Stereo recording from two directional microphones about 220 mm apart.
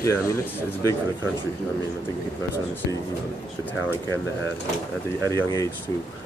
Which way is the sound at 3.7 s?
10° left (ahead or behind).